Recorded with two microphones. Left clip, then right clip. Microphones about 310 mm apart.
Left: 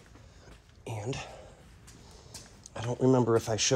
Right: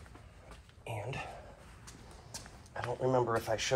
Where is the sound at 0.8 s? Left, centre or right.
Centre.